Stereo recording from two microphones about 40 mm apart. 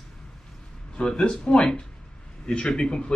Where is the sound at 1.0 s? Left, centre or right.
Left.